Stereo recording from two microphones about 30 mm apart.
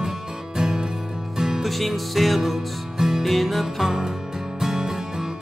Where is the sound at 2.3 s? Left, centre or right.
Centre.